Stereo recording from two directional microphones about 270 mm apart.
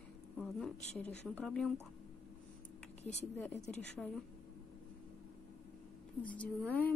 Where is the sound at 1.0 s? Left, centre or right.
Centre.